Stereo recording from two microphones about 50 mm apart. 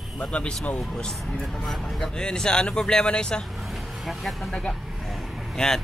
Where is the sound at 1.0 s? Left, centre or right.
Centre.